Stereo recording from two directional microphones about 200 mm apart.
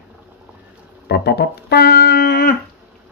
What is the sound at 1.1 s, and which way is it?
Music, 55° left (ahead or behind).